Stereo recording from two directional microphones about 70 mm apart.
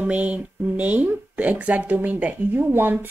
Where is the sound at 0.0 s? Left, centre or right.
Centre.